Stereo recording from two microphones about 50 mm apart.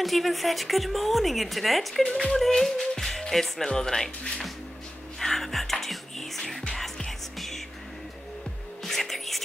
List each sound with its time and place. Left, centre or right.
0.0 s a woman's voice: centre
2.0 s speech: centre
2.4 s speech: centre
5.2 s music: centre
8.8 s music: centre